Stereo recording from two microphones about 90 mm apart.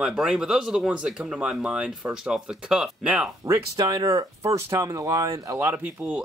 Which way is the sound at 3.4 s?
35° right (ahead or behind).